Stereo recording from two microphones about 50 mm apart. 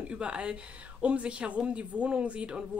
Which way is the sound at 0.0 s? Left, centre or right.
Right.